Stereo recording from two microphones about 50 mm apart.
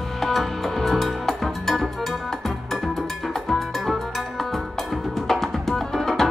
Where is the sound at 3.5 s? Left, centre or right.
Centre.